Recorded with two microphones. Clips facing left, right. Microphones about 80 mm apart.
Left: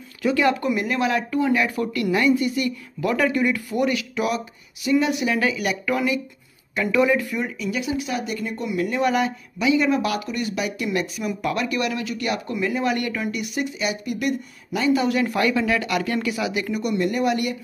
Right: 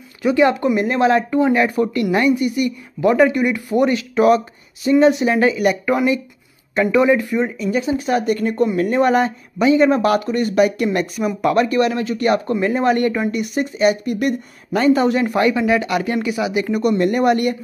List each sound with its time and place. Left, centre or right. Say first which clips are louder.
0.2 s speech: right 5 dB; right
15.2 s speech: right 5 dB; right
16.7 s speech: right 7 dB; right